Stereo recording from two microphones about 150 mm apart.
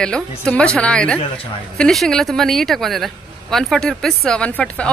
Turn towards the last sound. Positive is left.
turn(degrees=5)  # may be behind; listen again after turning